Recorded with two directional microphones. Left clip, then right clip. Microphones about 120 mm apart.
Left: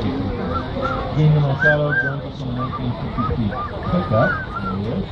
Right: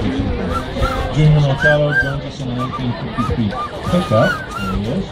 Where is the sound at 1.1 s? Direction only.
35° right (ahead or behind).